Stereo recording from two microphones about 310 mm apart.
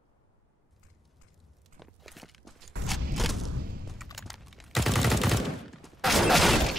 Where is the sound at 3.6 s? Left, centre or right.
Right.